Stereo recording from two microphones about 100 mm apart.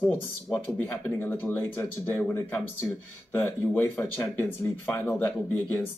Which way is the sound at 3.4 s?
20° left (ahead or behind).